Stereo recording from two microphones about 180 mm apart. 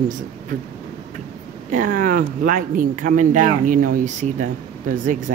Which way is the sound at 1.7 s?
50° right (ahead or behind).